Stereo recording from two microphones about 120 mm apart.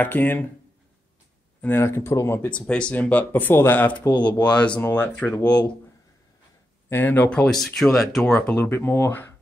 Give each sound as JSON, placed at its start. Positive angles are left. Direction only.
{"t": 0.0, "sound": "speech", "side_deg": 15}
{"t": 1.6, "sound": "speech", "side_deg": 20}
{"t": 2.5, "sound": "speech", "side_deg": 10}
{"t": 6.9, "sound": "speech", "side_deg": 15}
{"t": 8.4, "sound": "speech", "side_deg": 15}